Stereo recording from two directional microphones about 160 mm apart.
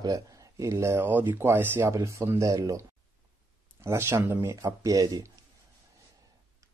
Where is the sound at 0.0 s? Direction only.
20° right (ahead or behind).